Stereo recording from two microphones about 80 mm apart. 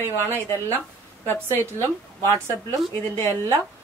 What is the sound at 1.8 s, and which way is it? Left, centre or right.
Speech, right.